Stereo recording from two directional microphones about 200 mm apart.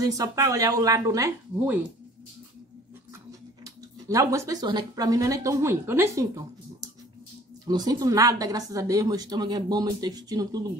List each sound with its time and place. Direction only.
0.0 s speech: 15° right (ahead or behind)
3.3 s speech: 15° right (ahead or behind)